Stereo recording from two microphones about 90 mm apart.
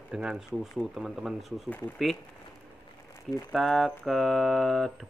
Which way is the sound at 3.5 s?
Centre (ahead or behind).